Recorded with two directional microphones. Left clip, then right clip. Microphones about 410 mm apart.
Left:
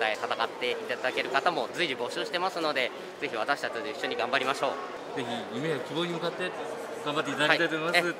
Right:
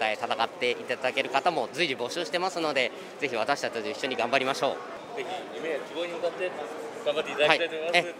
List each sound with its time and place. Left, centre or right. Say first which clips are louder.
0.0 s speech: right 1 dB; right
7.4 s speech: right 1 dB; right